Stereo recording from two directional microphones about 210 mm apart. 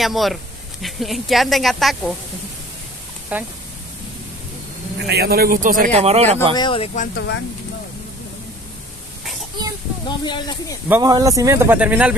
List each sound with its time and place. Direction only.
0.0 s speech: centre (ahead or behind)
3.3 s speech: 5° right (ahead or behind)
4.9 s speech: 55° right (ahead or behind); by 6.5 s 30° right (ahead or behind)
6.5 s speech: 20° left (ahead or behind)
7.2 s speech: 55° left (ahead or behind)
10.0 s speech: 20° left (ahead or behind)
10.9 s speech: 15° right (ahead or behind)